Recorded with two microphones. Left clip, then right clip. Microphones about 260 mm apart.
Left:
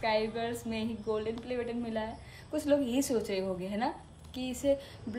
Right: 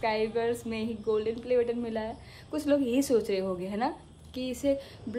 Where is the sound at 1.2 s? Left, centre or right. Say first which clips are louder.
Right 8 dB; centre.